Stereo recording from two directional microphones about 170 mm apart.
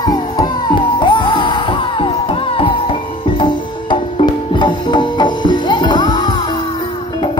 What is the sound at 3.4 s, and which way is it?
Music, 30° left (ahead or behind).